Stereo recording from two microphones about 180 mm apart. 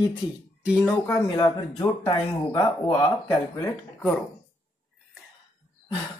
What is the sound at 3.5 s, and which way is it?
Speech, 15° left (ahead or behind).